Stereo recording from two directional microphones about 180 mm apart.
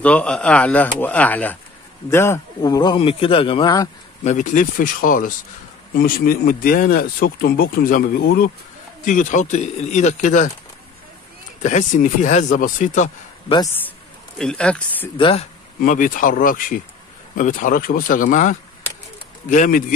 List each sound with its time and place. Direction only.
0.0 s a man's voice: 5° left (ahead or behind); by 3.9 s 25° left (ahead or behind)
4.2 s speech: 40° left (ahead or behind); by 8.5 s 55° left (ahead or behind)
9.0 s speech: 45° left (ahead or behind)
11.6 s speech: 45° left (ahead or behind)
14.4 s speech: 5° left (ahead or behind)
15.1 s a man's voice: 30° left (ahead or behind)
15.8 s speech: 50° left (ahead or behind)